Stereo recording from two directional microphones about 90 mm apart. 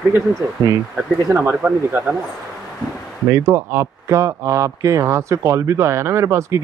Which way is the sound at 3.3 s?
35° right (ahead or behind).